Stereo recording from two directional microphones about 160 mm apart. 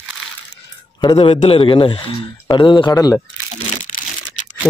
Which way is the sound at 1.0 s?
30° left (ahead or behind).